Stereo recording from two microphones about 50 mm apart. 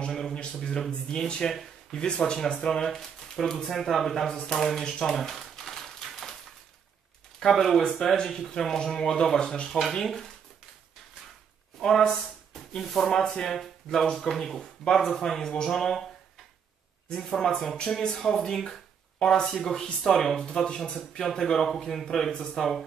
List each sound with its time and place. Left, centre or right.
0.3 s speech: centre
5.1 s typewriter: centre
7.3 s speech: centre
11.8 s speech: centre
17.2 s speech: centre